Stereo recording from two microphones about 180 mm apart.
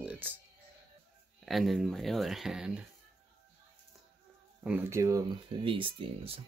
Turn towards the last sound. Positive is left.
turn(degrees=-30)  # may be behind; listen again after turning